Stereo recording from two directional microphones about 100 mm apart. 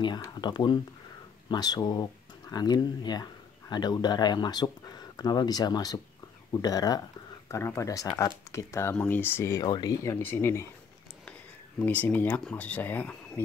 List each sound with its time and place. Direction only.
0.0 s speech: 50° left (ahead or behind)
7.4 s speech: 30° left (ahead or behind)
8.9 s speech: 20° left (ahead or behind)
9.7 s speech: 45° left (ahead or behind)
10.0 s speech: 25° left (ahead or behind)
11.8 s speech: 15° left (ahead or behind)